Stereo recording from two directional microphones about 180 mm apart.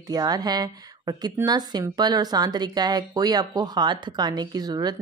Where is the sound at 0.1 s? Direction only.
20° right (ahead or behind).